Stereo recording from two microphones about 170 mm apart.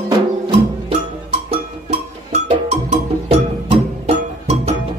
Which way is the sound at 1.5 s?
40° right (ahead or behind).